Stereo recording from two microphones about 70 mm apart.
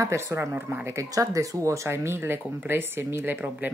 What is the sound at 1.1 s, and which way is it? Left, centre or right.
Speech, right.